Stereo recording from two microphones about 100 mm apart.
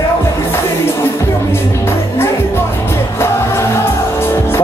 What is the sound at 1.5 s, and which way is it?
Music, 25° left (ahead or behind).